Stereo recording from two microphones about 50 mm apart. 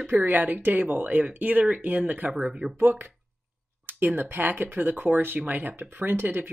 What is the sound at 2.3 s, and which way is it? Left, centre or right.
Speech, centre.